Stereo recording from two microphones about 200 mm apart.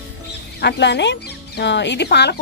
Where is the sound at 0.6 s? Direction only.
60° left (ahead or behind).